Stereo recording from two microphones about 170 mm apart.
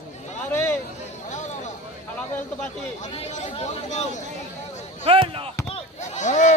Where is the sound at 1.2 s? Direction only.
45° left (ahead or behind).